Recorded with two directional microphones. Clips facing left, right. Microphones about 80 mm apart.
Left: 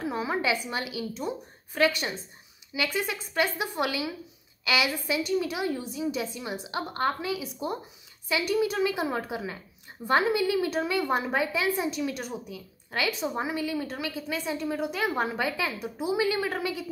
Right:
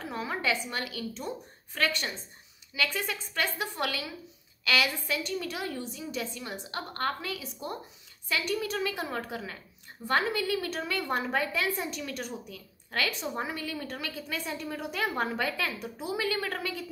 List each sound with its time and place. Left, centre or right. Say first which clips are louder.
0.0 s a woman's voice: left 4 dB; centre